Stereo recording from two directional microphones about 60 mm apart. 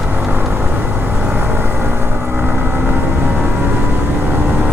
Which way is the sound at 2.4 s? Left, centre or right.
Right.